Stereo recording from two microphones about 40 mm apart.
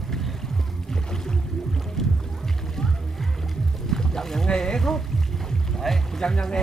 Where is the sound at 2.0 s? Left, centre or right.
Centre.